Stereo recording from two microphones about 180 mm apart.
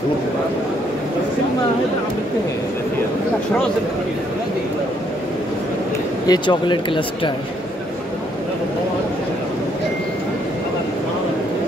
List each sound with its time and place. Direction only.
6.2 s speech: 25° left (ahead or behind)